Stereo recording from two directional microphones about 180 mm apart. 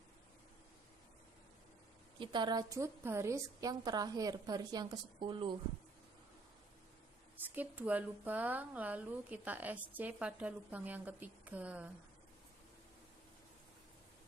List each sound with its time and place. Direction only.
2.1 s a woman's voice: 25° right (ahead or behind)
7.5 s a woman's voice: 10° right (ahead or behind)